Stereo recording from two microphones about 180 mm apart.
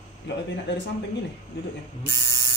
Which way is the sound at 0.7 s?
80° left.